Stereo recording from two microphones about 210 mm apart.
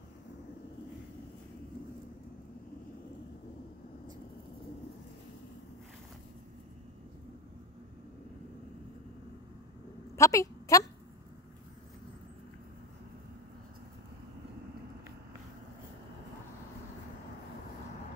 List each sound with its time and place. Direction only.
10.1 s a woman's voice: 15° left (ahead or behind)